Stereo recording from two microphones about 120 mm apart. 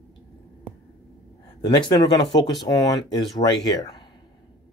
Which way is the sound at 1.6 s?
35° left (ahead or behind).